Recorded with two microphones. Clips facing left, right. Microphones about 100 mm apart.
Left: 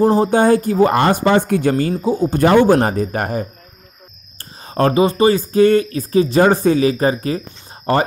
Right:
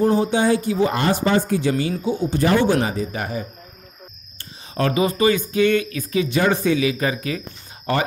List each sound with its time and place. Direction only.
0.0 s speech: 35° left (ahead or behind)
2.4 s speech: 50° left (ahead or behind)
4.6 s speech: 40° left (ahead or behind)